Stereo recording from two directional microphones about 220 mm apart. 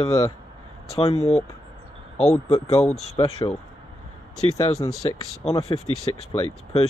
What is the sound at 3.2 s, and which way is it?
Speech, 15° left (ahead or behind).